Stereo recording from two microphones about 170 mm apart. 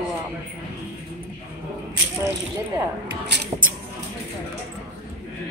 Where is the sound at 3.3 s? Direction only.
80° right.